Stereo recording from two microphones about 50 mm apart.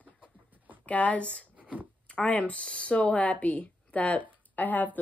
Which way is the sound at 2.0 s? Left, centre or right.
Left.